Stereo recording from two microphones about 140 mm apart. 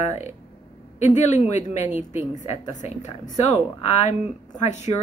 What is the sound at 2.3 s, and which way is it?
Speech, 60° left (ahead or behind).